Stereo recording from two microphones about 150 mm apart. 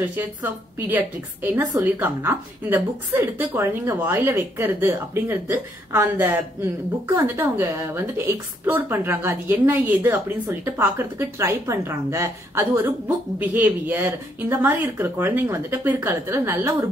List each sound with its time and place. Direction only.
0.0 s a woman's voice: 15° right (ahead or behind)